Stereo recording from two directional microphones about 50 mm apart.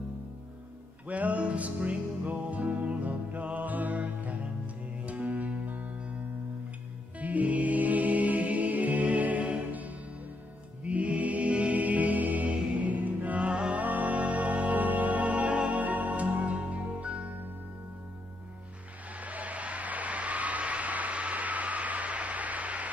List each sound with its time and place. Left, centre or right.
1.0 s music: right
7.2 s music: right
19.1 s a sound: right